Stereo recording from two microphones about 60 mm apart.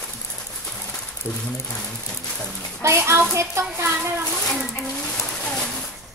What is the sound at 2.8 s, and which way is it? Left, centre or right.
A child's voice, right.